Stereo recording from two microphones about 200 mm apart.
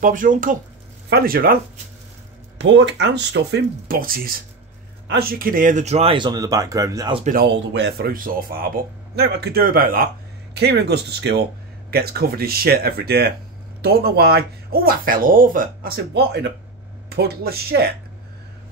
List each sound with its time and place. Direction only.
0.0 s speech: 40° right (ahead or behind)
2.6 s speech: 65° right (ahead or behind); by 7.2 s 20° right (ahead or behind)
7.7 s speech: 55° right (ahead or behind)
10.5 s speech: 55° right (ahead or behind)